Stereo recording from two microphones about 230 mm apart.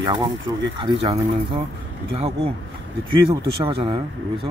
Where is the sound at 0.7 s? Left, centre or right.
Right.